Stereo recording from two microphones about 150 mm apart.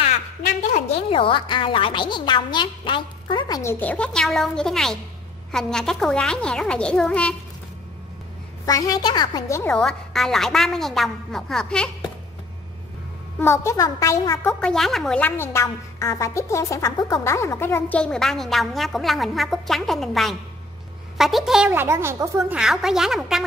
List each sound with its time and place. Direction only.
0.0 s a woman's voice: 45° left (ahead or behind); by 3.7 s 25° left (ahead or behind)
3.7 s a woman's voice: 10° left (ahead or behind)
8.6 s speech: 25° left (ahead or behind)
9.7 s a woman's voice: 5° left (ahead or behind)
13.4 s speech: 15° left (ahead or behind)
14.4 s a woman's voice: 5° left (ahead or behind)
21.7 s speech: 15° right (ahead or behind)
22.6 s a woman's voice: 5° right (ahead or behind)